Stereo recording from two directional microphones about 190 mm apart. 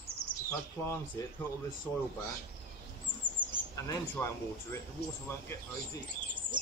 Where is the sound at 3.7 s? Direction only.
15° left (ahead or behind).